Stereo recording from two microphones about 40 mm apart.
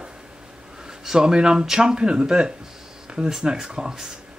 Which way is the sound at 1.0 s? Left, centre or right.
Centre.